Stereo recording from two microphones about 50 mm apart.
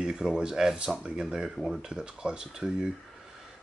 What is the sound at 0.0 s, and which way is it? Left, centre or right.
Speech, centre.